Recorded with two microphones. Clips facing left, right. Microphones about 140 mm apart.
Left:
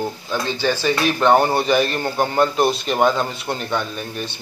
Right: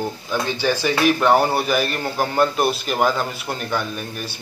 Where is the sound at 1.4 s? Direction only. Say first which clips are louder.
Left 2 dB; 5° right (ahead or behind).